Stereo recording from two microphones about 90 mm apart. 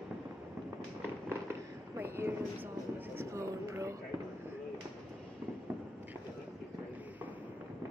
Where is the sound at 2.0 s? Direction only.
25° right (ahead or behind).